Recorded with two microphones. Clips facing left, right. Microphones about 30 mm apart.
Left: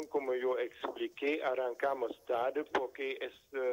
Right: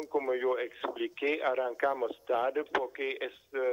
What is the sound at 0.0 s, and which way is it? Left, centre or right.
Speech, centre.